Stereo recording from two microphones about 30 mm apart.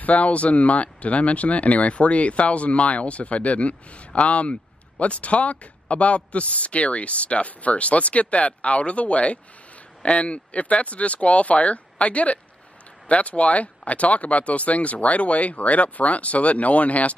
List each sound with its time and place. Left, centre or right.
0.0 s speech: left